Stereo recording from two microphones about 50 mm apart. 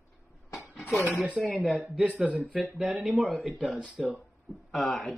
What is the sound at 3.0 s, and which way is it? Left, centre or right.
Speech, centre.